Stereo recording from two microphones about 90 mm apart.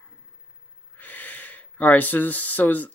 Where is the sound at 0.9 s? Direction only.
20° left (ahead or behind).